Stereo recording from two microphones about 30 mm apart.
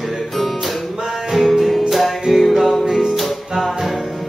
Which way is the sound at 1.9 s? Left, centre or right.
Centre.